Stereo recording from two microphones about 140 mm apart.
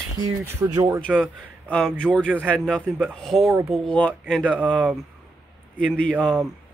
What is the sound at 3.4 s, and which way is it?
Speech, 20° right (ahead or behind).